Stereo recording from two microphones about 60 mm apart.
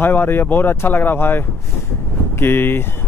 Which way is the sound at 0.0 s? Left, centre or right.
Left.